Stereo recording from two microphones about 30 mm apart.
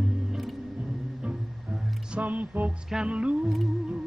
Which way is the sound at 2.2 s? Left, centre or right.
Right.